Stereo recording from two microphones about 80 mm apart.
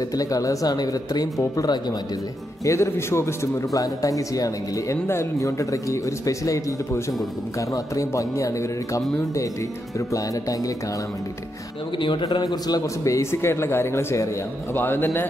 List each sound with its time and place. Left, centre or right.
0.1 s speech: left
2.6 s a man's voice: left
3.7 s a man's voice: left
12.0 s a man's voice: left
14.7 s speech: left